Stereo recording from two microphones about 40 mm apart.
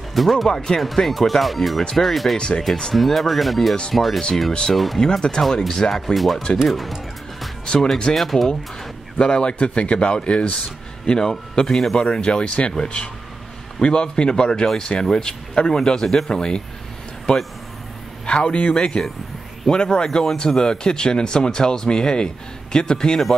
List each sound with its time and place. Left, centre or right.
0.1 s speech: centre
0.5 s speech: centre
0.7 s speech: centre
2.3 s speech: left
2.9 s speech: centre
5.0 s speech: centre
5.4 s speech: centre
6.1 s speech: centre
7.6 s speech: centre
8.1 s speech: centre
9.2 s speech: left
11.1 s speech: centre
12.1 s speech: left
18.2 s a man's voice: left